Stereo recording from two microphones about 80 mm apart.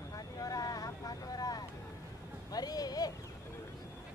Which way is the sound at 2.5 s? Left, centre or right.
Left.